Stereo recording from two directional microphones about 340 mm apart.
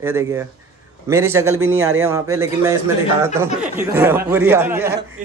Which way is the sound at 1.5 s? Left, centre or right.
Right.